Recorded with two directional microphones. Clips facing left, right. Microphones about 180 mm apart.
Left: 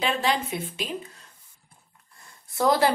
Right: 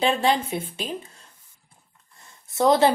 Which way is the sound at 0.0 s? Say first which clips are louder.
Right 4 dB; 30° right (ahead or behind).